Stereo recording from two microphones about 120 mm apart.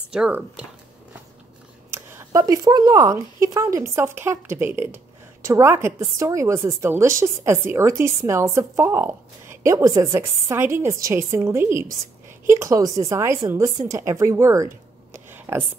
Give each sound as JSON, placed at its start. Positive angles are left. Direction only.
{"t": 0.3, "sound": "speech", "side_deg": -10}
{"t": 1.9, "sound": "speech", "side_deg": -20}